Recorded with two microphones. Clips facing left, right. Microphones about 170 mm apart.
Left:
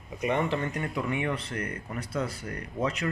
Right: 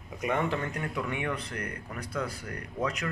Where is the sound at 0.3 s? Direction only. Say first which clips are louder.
Left 2 dB; 20° left (ahead or behind).